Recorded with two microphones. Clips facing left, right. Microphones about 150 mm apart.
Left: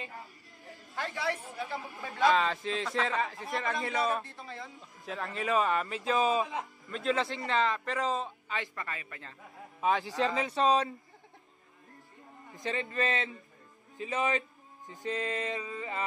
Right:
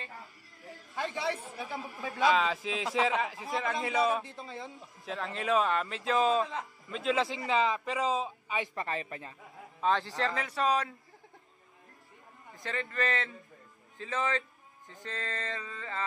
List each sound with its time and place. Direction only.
0.0 s a sound: 20° left (ahead or behind)
0.9 s a woman's voice: 20° right (ahead or behind)
2.0 s a man's voice: centre (ahead or behind)
4.2 s a woman's voice: 20° right (ahead or behind)
5.0 s a man's voice: centre (ahead or behind)
8.5 s a woman's voice: 25° right (ahead or behind)
9.8 s a man's voice: 5° left (ahead or behind)
10.0 s speech: 20° left (ahead or behind)
12.5 s speech: 20° left (ahead or behind)
15.0 s mantra: 15° left (ahead or behind)